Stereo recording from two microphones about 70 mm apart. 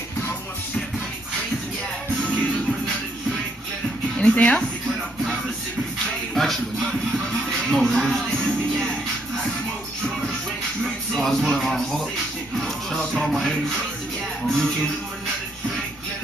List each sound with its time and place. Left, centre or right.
4.2 s speech: centre
6.3 s music: centre
8.4 s speech: centre
11.1 s music: centre
14.4 s speech: centre